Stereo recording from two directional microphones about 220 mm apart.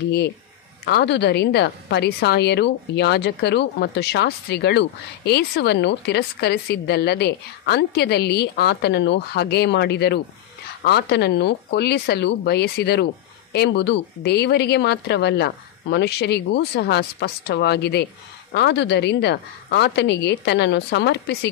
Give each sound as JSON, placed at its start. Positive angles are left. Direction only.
{"t": 0.8, "sound": "a woman's voice", "side_deg": 50}